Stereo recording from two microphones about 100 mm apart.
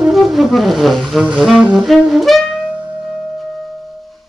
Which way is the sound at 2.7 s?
15° right (ahead or behind).